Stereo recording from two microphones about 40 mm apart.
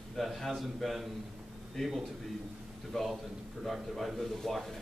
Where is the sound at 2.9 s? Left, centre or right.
Centre.